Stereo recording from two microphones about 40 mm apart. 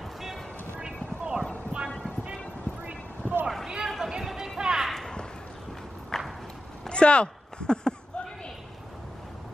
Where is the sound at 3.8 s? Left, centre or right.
Centre.